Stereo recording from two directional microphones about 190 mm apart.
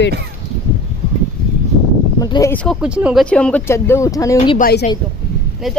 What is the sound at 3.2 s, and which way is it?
Speech, 5° left (ahead or behind).